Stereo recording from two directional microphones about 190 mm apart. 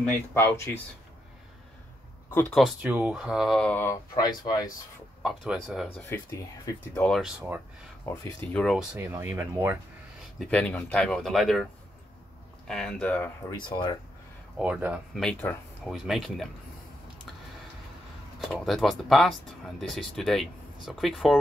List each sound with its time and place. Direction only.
0.0 s speech: 10° left (ahead or behind)
2.3 s speech: 5° left (ahead or behind)
4.1 s speech: 20° left (ahead or behind)
5.2 s speech: centre (ahead or behind)
6.0 s speech: 10° left (ahead or behind)
7.1 s speech: centre (ahead or behind)
8.0 s speech: 10° left (ahead or behind)
9.0 s speech: 15° right (ahead or behind)
10.4 s speech: 5° left (ahead or behind)
12.6 s speech: centre (ahead or behind)
13.6 s speech: 25° left (ahead or behind)
14.6 s speech: 10° right (ahead or behind)
18.4 s speech: centre (ahead or behind)